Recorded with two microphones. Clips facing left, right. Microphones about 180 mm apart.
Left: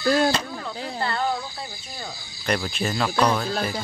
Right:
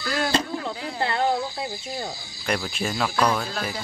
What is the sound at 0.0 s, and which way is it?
Speech, 30° left (ahead or behind).